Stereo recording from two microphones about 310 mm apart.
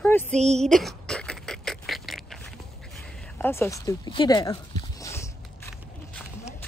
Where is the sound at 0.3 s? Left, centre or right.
Right.